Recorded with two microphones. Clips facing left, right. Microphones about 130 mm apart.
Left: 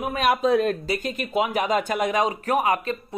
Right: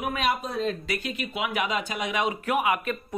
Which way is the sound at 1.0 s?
40° left (ahead or behind).